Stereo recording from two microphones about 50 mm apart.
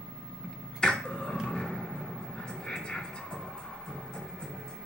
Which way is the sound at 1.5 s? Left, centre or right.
Centre.